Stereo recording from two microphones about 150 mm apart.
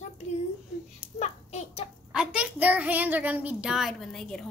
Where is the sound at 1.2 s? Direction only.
45° left (ahead or behind).